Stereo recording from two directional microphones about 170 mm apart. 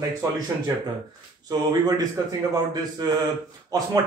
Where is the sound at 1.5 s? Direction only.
20° right (ahead or behind).